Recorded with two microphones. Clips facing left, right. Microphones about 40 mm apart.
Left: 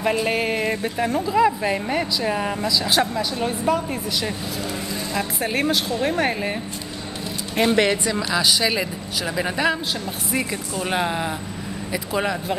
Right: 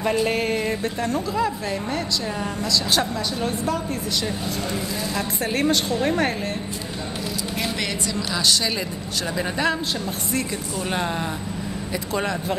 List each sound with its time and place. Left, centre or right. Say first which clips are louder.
0.0 s speech: even; centre; by 2.5 s left
2.6 s a woman's voice: even; centre
7.5 s speech: left 11 dB; left
8.3 s a woman's voice: left 2 dB; centre